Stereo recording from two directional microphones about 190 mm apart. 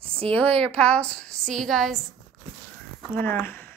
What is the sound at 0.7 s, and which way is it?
A woman's voice, 5° left (ahead or behind).